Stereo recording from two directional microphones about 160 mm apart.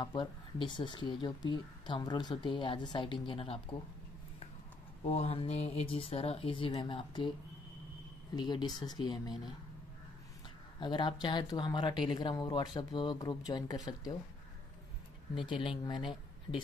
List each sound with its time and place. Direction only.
0.0 s a woman's voice: 30° left (ahead or behind)
5.0 s speech: 40° left (ahead or behind)
8.4 s a woman's voice: 25° left (ahead or behind)
10.8 s a woman's voice: 30° left (ahead or behind)
15.3 s speech: 30° left (ahead or behind)